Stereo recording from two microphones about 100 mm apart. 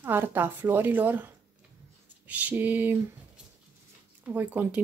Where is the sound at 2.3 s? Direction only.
15° right (ahead or behind).